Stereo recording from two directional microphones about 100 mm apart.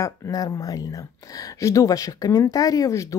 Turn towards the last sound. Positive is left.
turn(degrees=35)  # may be behind; listen again after turning